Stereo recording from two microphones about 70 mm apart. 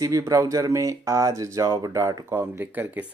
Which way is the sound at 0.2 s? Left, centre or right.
Right.